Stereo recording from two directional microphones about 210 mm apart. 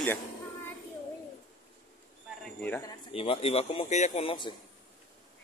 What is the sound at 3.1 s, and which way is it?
Speech, 25° left (ahead or behind).